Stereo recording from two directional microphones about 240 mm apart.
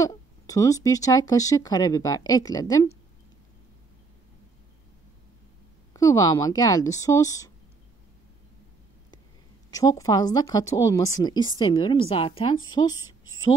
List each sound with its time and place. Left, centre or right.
0.0 s speech: centre
5.9 s speech: centre
9.7 s speech: centre
13.0 s a sound: left